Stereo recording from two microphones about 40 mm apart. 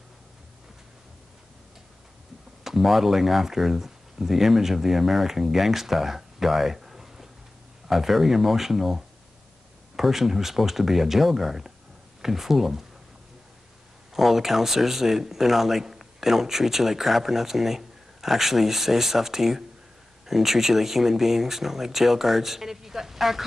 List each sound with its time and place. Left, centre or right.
2.6 s speech: centre
14.1 s speech: centre